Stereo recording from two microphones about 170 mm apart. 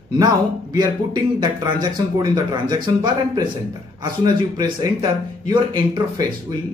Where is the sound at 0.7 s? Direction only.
25° right (ahead or behind).